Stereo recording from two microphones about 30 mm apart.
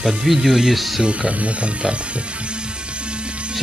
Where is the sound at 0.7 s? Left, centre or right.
Centre.